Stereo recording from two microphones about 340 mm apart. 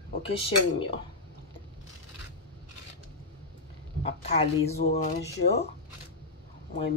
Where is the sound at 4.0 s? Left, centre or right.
Centre.